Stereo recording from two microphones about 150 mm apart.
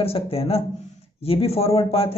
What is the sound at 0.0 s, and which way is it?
A man's voice, 40° left (ahead or behind).